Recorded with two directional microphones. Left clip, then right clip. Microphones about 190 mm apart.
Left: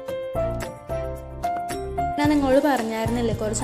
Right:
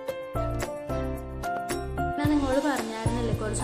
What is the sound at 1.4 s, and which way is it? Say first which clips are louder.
Music: left 4 dB; centre (ahead or behind).